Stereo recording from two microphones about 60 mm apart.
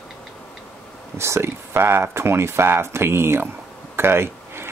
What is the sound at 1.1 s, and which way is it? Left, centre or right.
Speech, right.